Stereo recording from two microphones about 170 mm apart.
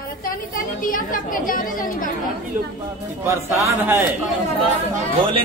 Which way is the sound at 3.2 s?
15° right (ahead or behind).